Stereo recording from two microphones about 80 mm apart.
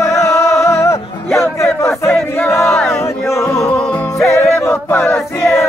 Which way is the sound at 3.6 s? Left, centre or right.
Centre.